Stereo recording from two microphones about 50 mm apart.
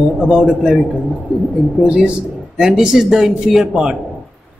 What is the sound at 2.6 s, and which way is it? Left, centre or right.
Speech, centre.